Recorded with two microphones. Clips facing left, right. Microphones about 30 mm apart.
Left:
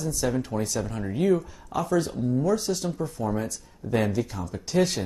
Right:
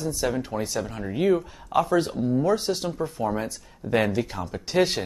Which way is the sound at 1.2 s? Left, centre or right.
Right.